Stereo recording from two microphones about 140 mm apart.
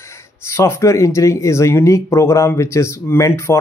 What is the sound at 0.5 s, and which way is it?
Speech, 20° left (ahead or behind).